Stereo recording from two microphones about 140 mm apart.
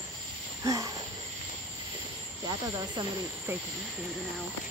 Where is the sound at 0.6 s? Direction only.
25° right (ahead or behind).